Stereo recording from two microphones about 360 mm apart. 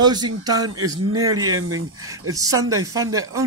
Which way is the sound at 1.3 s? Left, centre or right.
Right.